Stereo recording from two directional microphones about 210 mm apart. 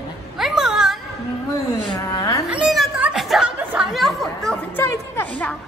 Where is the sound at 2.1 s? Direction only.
15° left (ahead or behind).